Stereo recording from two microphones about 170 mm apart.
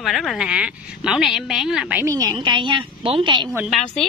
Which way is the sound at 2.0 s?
20° right (ahead or behind).